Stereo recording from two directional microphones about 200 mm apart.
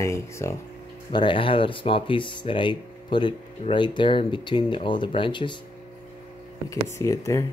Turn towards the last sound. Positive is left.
turn(degrees=15)  # may be behind; listen again after turning